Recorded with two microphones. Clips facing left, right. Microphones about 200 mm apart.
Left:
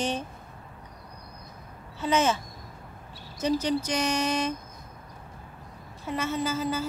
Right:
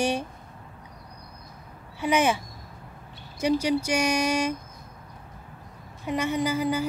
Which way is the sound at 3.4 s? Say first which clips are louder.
Right 2 dB; 10° right (ahead or behind).